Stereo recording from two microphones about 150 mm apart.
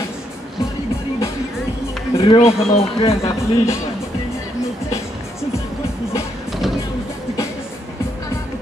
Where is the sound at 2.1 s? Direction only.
35° left (ahead or behind).